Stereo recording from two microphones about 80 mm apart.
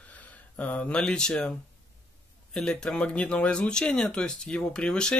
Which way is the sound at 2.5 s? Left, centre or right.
Centre.